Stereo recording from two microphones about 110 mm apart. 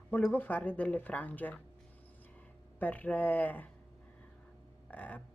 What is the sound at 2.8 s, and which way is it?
Speech, 15° left (ahead or behind).